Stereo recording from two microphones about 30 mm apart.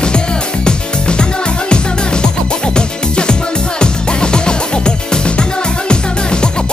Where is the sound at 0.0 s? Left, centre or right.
Left.